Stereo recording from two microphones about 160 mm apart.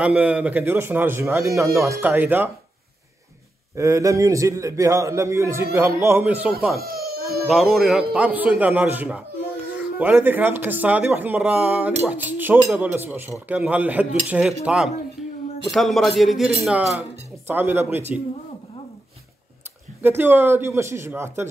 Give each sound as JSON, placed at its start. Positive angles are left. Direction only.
{"t": 0.0, "sound": "speech", "side_deg": -10}
{"t": 3.7, "sound": "a man's voice", "side_deg": -20}
{"t": 6.8, "sound": "crying", "side_deg": -70}
{"t": 7.4, "sound": "speech", "side_deg": 0}
{"t": 17.5, "sound": "speech", "side_deg": -15}
{"t": 20.0, "sound": "speech", "side_deg": -15}